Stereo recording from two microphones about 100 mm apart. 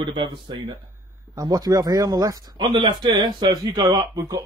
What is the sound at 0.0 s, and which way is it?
Speech, 55° right (ahead or behind).